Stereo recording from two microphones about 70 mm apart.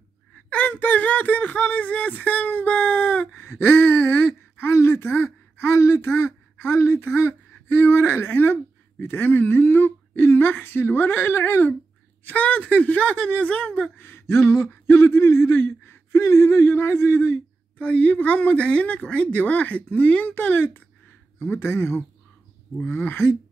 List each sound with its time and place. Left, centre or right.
0.5 s speech: left
3.4 s speech: left
13.9 s speech: left
17.8 s speech: left